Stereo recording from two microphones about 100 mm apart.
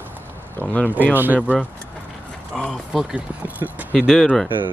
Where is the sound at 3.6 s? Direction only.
35° right (ahead or behind).